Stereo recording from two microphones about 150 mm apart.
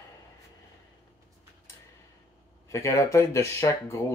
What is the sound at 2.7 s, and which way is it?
Speech, 20° left (ahead or behind).